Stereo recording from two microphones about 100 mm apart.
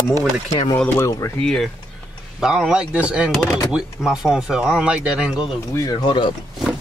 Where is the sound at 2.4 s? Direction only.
5° right (ahead or behind).